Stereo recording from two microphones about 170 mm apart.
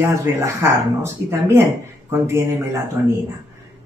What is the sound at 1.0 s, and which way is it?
Speech, 15° right (ahead or behind).